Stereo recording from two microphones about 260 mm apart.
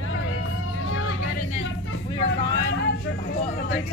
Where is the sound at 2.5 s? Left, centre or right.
Left.